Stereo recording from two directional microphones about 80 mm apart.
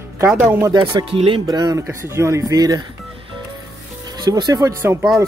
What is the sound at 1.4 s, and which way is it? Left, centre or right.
Speech, right.